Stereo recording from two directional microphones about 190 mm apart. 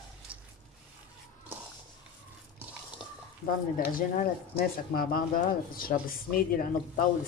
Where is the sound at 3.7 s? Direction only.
50° left (ahead or behind).